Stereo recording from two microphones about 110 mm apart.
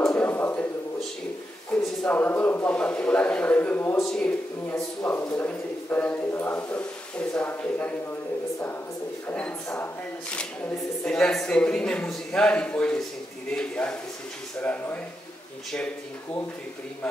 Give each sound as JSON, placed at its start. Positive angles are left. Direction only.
{"t": 0.1, "sound": "a sound", "side_deg": 20}
{"t": 1.7, "sound": "a sound", "side_deg": 5}
{"t": 2.0, "sound": "speech", "side_deg": 15}
{"t": 4.0, "sound": "speech", "side_deg": 5}
{"t": 4.6, "sound": "speech", "side_deg": 15}
{"t": 9.3, "sound": "speech", "side_deg": 10}
{"t": 11.1, "sound": "speech", "side_deg": 5}